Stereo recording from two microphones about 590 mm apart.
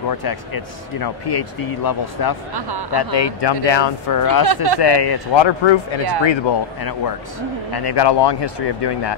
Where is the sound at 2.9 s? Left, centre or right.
Left.